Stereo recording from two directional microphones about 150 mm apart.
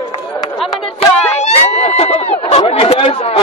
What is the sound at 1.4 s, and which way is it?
A man's voice, 45° left (ahead or behind).